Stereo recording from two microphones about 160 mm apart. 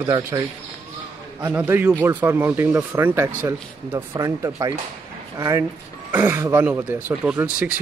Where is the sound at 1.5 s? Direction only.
10° right (ahead or behind).